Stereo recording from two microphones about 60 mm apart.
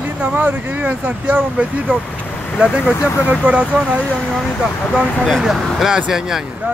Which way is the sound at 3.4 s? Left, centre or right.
Right.